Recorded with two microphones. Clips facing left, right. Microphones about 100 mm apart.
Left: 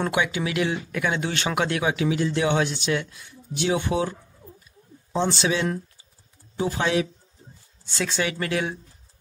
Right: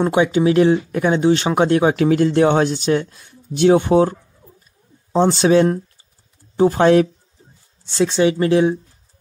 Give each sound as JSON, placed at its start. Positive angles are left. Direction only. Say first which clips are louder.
{"t": 0.0, "sound": "speech", "louder": "right 9 dB", "side_deg": -30}
{"t": 2.0, "sound": "speech", "louder": "right 9 dB", "side_deg": -50}
{"t": 7.9, "sound": "speech", "louder": "right 11 dB", "side_deg": -25}